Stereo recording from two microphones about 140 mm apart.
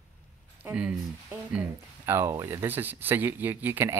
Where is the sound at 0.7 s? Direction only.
10° right (ahead or behind).